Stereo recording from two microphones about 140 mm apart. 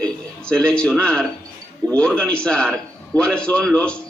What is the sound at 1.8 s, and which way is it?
Speech, 30° right (ahead or behind).